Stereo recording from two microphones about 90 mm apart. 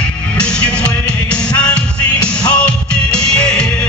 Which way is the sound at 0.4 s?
10° left (ahead or behind).